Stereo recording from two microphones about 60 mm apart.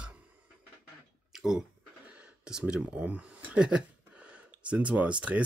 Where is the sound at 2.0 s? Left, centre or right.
Right.